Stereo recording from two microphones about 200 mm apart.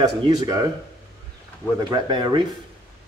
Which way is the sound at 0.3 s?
20° right (ahead or behind).